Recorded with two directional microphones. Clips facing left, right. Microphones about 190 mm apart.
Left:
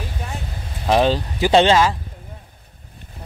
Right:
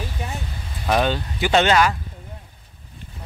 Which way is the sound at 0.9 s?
30° left (ahead or behind).